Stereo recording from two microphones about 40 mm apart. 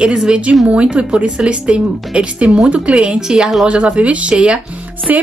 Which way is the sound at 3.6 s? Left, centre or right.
Right.